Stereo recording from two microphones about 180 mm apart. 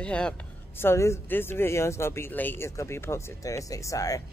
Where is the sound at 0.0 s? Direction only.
5° left (ahead or behind).